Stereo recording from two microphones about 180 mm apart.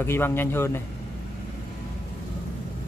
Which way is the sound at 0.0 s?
15° left (ahead or behind).